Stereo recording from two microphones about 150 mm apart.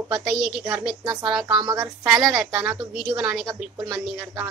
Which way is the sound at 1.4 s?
25° right (ahead or behind).